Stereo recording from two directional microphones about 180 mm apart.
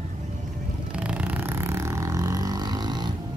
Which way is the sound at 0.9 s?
5° right (ahead or behind).